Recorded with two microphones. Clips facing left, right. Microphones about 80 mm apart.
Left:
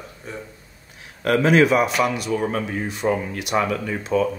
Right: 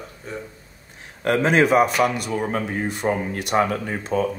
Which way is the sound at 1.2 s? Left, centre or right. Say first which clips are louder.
Left 2 dB; right.